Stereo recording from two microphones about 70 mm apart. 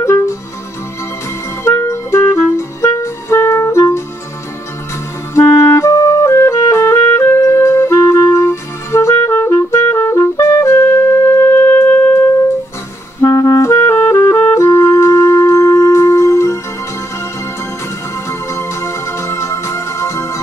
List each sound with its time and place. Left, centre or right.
0.0 s music: left
1.6 s music: left
5.3 s clarinet: left
5.9 s music: left
11.6 s shofar: left
13.2 s clarinet: left
13.7 s clarinet: left
14.5 s music: left
18.5 s music: left